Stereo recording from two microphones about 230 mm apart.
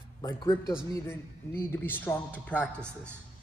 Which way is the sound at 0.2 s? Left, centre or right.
Centre.